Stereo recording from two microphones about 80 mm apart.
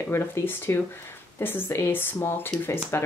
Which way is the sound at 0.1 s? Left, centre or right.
Left.